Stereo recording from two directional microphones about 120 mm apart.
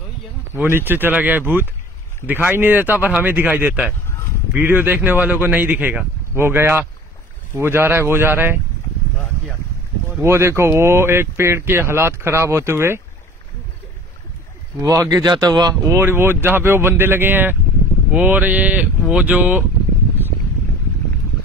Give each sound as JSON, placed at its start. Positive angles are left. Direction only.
{"t": 0.6, "sound": "speech", "side_deg": -20}
{"t": 10.2, "sound": "speech", "side_deg": -20}
{"t": 14.8, "sound": "speech", "side_deg": -25}
{"t": 15.8, "sound": "speech", "side_deg": -20}